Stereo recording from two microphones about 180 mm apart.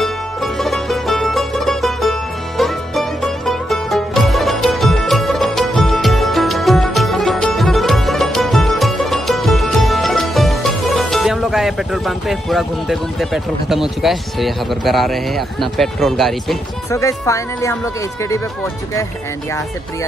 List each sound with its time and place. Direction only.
0.0 s music: centre (ahead or behind)
16.9 s speech: 15° left (ahead or behind)